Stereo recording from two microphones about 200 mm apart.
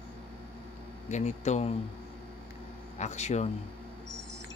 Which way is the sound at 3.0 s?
35° left (ahead or behind).